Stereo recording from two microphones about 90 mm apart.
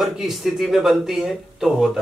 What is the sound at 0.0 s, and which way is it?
Speech, centre (ahead or behind).